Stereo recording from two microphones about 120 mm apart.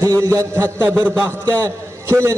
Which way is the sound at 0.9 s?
15° right (ahead or behind).